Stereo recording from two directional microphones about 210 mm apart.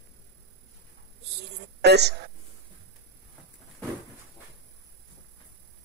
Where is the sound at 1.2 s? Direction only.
55° right (ahead or behind).